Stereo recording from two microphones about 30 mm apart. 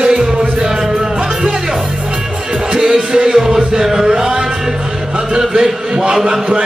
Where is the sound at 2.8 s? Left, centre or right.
Centre.